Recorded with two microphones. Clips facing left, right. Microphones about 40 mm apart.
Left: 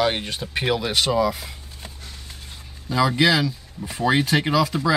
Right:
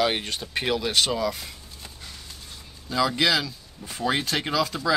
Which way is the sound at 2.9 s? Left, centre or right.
Centre.